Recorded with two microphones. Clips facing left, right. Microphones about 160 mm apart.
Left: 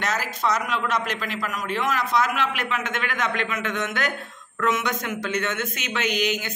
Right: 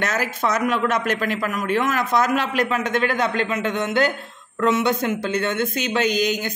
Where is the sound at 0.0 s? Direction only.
55° right (ahead or behind).